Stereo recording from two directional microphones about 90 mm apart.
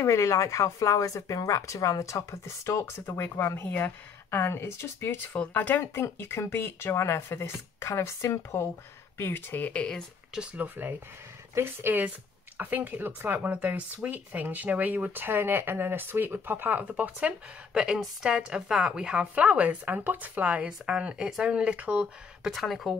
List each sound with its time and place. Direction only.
0.0 s speech: 35° left (ahead or behind); by 10.0 s 10° left (ahead or behind)
10.3 s a woman's voice: 15° right (ahead or behind)
17.7 s a woman's voice: 5° right (ahead or behind)
22.5 s speech: centre (ahead or behind)